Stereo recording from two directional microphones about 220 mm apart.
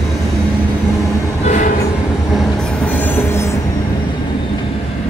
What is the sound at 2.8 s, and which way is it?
Train, 5° left (ahead or behind).